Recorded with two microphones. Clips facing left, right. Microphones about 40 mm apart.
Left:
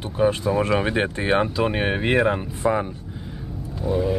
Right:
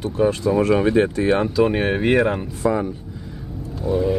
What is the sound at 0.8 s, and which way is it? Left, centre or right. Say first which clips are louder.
Speech: right 6 dB; left.